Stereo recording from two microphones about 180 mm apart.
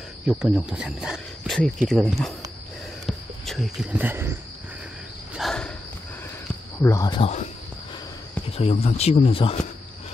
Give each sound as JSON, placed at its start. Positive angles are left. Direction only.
{"t": 0.3, "sound": "speech", "side_deg": 0}
{"t": 5.3, "sound": "cricket", "side_deg": 0}
{"t": 6.8, "sound": "speech", "side_deg": 15}
{"t": 7.2, "sound": "speech", "side_deg": 40}
{"t": 8.5, "sound": "speech", "side_deg": 35}